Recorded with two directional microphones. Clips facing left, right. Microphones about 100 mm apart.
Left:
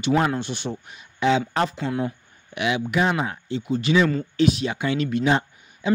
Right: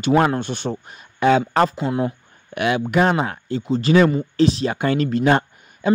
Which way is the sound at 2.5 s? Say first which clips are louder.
Right 4 dB; 50° right (ahead or behind).